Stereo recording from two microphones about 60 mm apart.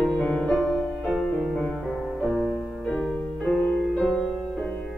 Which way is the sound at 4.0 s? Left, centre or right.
Centre.